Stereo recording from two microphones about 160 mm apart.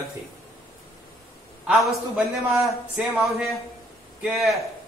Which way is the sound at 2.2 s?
Centre (ahead or behind).